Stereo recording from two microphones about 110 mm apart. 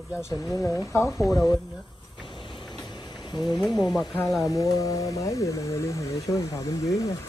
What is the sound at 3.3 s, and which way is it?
Speech, 40° left (ahead or behind).